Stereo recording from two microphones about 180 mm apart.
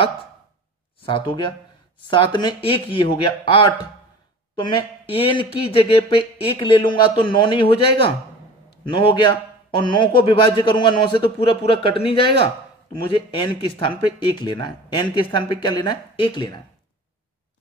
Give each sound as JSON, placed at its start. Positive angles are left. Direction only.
{"t": 1.0, "sound": "speech", "side_deg": 25}